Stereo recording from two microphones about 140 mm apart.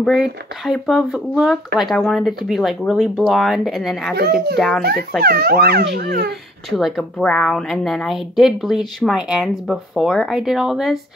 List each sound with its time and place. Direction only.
0.0 s a woman's voice: centre (ahead or behind)
5.2 s speech: 90° right
6.8 s a woman's voice: centre (ahead or behind)